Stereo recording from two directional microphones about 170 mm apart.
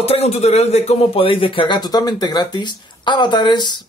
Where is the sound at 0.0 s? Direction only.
35° left (ahead or behind).